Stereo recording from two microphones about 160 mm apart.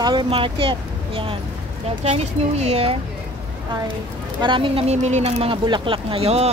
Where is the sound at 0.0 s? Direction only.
30° right (ahead or behind).